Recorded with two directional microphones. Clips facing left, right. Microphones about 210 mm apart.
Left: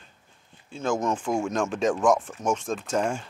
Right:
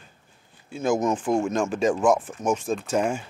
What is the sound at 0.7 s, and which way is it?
Speech, 10° right (ahead or behind).